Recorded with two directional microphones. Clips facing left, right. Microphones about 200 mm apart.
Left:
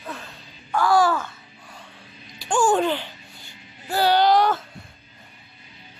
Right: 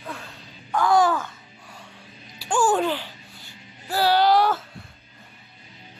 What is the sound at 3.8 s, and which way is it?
Music, 5° right (ahead or behind).